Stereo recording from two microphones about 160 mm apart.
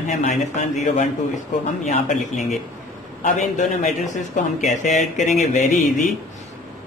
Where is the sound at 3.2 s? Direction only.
50° left (ahead or behind).